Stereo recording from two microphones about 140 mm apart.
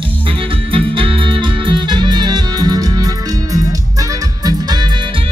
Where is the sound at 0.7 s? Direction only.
40° right (ahead or behind).